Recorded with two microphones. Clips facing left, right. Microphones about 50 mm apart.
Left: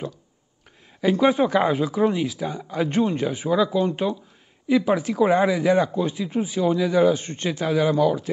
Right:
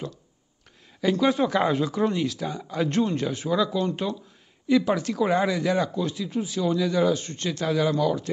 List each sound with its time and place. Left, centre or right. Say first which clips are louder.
1.0 s speech: left 3 dB; centre